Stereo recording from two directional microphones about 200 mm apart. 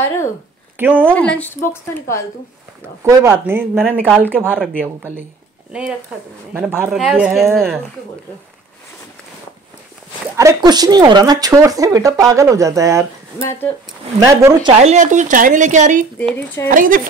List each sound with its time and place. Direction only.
0.7 s speech: 10° right (ahead or behind)
1.1 s a woman's voice: 5° left (ahead or behind)
3.0 s speech: 15° right (ahead or behind)
4.4 s speech: 5° left (ahead or behind)
4.8 s speech: 10° right (ahead or behind)
10.3 s speech: 15° right (ahead or behind)
13.4 s a woman's voice: 15° left (ahead or behind)
14.2 s speech: 15° right (ahead or behind)
14.9 s speech: 35° right (ahead or behind)